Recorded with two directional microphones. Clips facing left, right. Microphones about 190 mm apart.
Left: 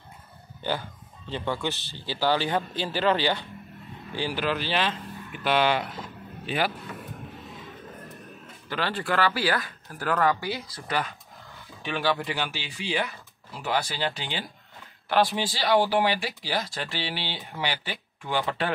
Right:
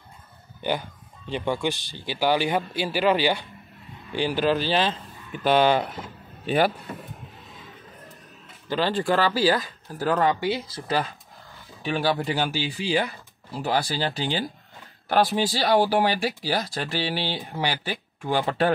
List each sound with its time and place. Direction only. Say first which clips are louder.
0.6 s speech: right 3 dB; 15° right (ahead or behind)
4.4 s speech: right 5 dB; 35° right (ahead or behind)
8.6 s speech: right 6 dB; 30° right (ahead or behind)